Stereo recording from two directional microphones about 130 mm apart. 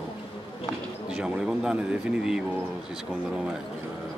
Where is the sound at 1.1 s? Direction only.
5° right (ahead or behind).